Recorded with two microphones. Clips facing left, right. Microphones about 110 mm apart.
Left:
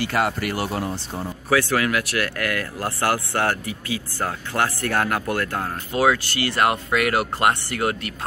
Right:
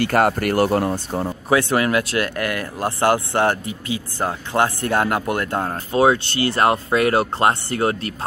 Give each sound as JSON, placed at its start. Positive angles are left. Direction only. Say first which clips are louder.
{"t": 0.0, "sound": "speech", "louder": "right 5 dB", "side_deg": -50}
{"t": 1.5, "sound": "speech", "louder": "right 2 dB", "side_deg": -25}